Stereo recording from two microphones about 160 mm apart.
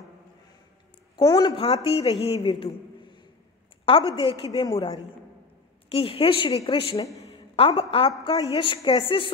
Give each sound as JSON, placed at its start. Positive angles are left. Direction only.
{"t": 1.1, "sound": "speech", "side_deg": 25}
{"t": 1.6, "sound": "a woman's voice", "side_deg": 35}
{"t": 5.9, "sound": "a woman's voice", "side_deg": 35}
{"t": 7.2, "sound": "a sound", "side_deg": 35}
{"t": 8.2, "sound": "a woman's voice", "side_deg": 30}